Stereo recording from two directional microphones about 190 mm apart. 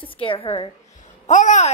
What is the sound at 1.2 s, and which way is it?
Speech, 40° left (ahead or behind).